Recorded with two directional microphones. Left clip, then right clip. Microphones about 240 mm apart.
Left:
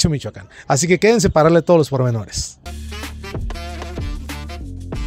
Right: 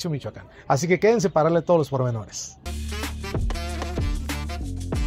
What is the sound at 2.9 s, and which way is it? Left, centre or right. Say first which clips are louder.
Music: left 1 dB; centre.